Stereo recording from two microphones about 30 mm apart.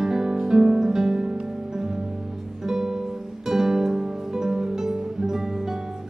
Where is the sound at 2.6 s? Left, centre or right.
Centre.